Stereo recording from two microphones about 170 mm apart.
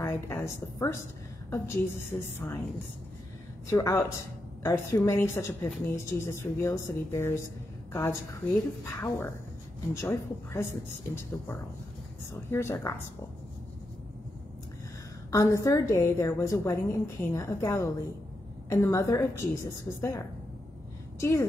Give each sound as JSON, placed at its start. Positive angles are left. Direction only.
{"t": 0.0, "sound": "a woman's voice", "side_deg": 15}
{"t": 3.6, "sound": "a woman's voice", "side_deg": 15}
{"t": 12.4, "sound": "a woman's voice", "side_deg": 15}
{"t": 15.3, "sound": "a woman's voice", "side_deg": 15}